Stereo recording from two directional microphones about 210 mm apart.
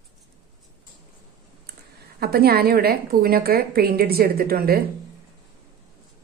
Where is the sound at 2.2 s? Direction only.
45° right (ahead or behind).